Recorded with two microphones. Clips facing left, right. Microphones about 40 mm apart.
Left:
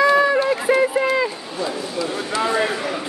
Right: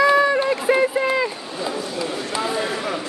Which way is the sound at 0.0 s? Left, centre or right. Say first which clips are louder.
Left 1 dB; centre.